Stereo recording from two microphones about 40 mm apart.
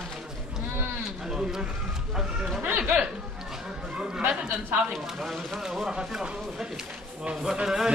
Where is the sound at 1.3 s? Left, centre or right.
Centre.